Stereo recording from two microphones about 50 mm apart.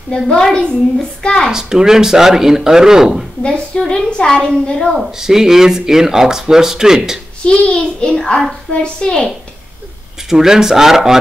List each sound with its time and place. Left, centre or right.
0.1 s a woman's voice: centre
1.5 s speech: centre
3.4 s a woman's voice: centre
4.9 s speech: centre
7.4 s a child's voice: centre
10.3 s speech: centre